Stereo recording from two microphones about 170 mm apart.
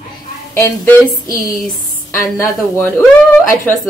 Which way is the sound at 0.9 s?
20° left (ahead or behind).